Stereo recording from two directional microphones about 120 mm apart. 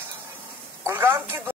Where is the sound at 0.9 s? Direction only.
20° right (ahead or behind).